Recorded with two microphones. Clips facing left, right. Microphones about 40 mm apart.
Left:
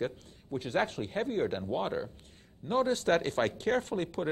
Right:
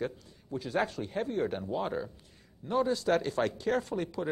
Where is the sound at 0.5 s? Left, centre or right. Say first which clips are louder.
Even; left.